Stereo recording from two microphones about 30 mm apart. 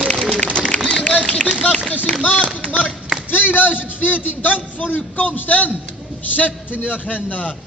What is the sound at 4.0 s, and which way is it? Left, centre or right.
A man's voice, left.